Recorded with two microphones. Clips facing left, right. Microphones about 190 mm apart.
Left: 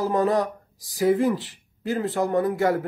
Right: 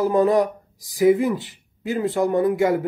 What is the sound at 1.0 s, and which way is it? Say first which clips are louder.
Speech: right 3 dB; 10° right (ahead or behind).